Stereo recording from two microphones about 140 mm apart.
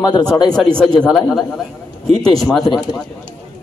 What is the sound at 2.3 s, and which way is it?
Speech, centre (ahead or behind).